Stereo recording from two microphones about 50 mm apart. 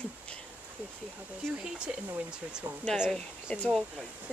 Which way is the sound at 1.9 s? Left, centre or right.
Centre.